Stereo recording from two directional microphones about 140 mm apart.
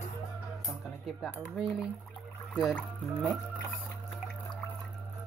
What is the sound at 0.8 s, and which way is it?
Speech, 5° right (ahead or behind).